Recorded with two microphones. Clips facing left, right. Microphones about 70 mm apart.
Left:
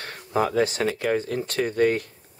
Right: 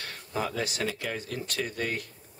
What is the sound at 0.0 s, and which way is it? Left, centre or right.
Speech, left.